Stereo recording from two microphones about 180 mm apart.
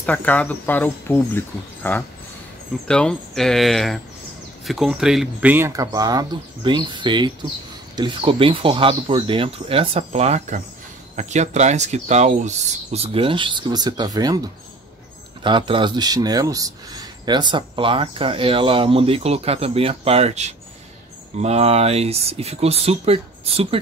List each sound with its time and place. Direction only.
0.0 s a man's voice: 10° left (ahead or behind); by 14.4 s 20° right (ahead or behind)
15.4 s a man's voice: 25° right (ahead or behind)